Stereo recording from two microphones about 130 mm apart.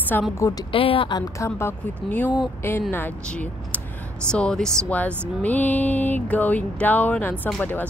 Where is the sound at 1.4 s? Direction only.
20° left (ahead or behind).